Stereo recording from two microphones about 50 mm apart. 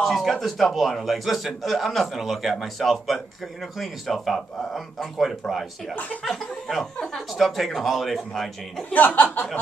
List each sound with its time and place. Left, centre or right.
0.2 s a man's voice: centre
8.9 s speech: left